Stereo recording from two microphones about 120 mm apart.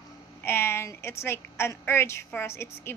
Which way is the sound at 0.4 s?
20° left (ahead or behind).